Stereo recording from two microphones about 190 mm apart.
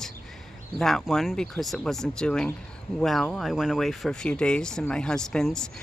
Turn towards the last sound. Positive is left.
turn(degrees=5)  # may be behind; listen again after turning